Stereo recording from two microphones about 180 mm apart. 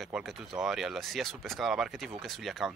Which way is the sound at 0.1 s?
5° right (ahead or behind).